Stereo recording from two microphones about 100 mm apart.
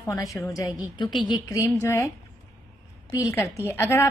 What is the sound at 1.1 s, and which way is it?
Speech, 55° left (ahead or behind).